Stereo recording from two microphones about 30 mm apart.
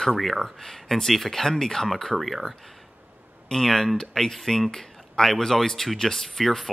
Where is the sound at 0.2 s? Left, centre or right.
Centre.